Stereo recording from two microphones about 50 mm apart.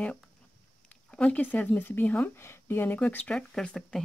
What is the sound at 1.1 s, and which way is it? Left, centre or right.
Speech, left.